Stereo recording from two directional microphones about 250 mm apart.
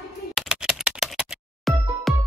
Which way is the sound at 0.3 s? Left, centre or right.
Centre.